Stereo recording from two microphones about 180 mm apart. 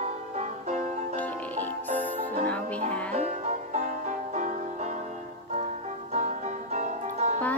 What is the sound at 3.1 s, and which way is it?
Music, 40° right (ahead or behind).